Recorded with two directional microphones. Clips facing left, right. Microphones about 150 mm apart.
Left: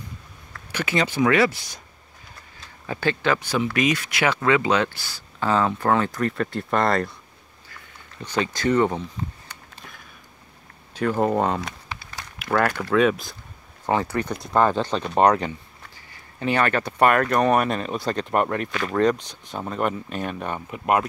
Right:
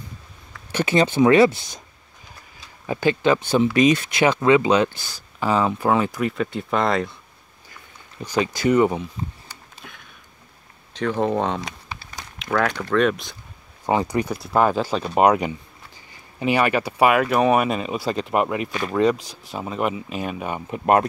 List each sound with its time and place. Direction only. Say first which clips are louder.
0.7 s speech: right 5 dB; 25° right (ahead or behind)
2.9 s speech: right 4 dB; 15° right (ahead or behind); by 7.2 s centre (ahead or behind)
8.2 s speech: right 3 dB; 10° right (ahead or behind)
9.8 s a sound: right 1 dB; centre (ahead or behind)
10.9 s speech: even; 5° left (ahead or behind)
12.0 s a sound: even; 20° right (ahead or behind)
12.4 s speech: even; 5° left (ahead or behind)
13.8 s speech: right 2 dB; 15° right (ahead or behind)
20.7 s speech: right 4 dB; 40° right (ahead or behind)